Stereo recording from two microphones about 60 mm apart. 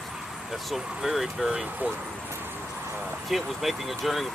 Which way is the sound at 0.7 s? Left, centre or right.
Centre.